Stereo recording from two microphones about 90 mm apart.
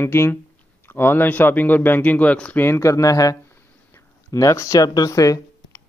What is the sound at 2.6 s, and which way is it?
Speech, 30° left (ahead or behind).